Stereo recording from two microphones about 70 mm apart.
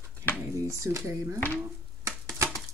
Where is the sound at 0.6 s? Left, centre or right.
Right.